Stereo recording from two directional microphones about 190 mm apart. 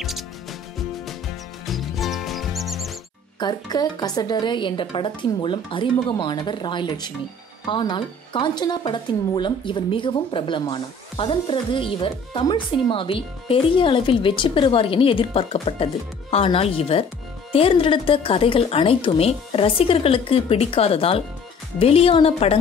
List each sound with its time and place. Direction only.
0.0 s music: centre (ahead or behind)
1.7 s music: centre (ahead or behind)
3.3 s a woman's voice: 20° left (ahead or behind)